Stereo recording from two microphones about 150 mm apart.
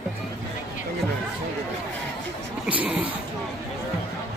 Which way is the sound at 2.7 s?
10° right (ahead or behind).